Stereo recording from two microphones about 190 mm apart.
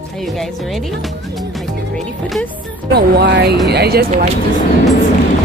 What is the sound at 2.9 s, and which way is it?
Speech, 60° right (ahead or behind).